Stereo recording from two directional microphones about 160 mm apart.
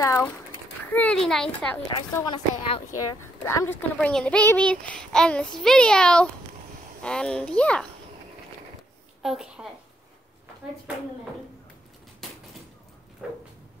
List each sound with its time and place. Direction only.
0.0 s a child's voice: 20° left (ahead or behind)
0.9 s a child's voice: 5° left (ahead or behind)
2.1 s speech: 25° left (ahead or behind); by 7.8 s 5° left (ahead or behind)
9.2 s a child's voice: 5° right (ahead or behind)
13.2 s a sound: 5° right (ahead or behind)